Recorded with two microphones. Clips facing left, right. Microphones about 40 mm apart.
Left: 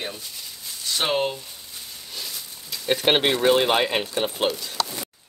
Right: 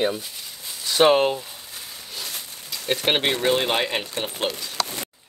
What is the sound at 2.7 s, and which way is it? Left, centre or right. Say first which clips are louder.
Speech: left 2 dB; centre.